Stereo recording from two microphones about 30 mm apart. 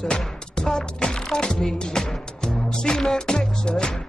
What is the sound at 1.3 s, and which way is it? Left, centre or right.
Music, centre.